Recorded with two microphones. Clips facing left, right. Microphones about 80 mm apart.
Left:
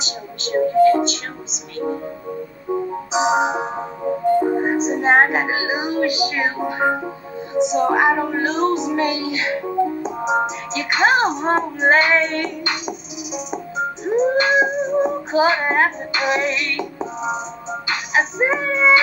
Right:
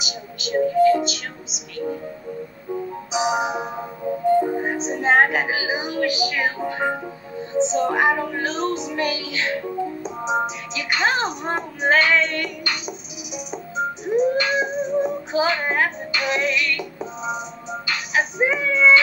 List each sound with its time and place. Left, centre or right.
0.0 s music: left
2.7 s music: left
10.7 s speech: left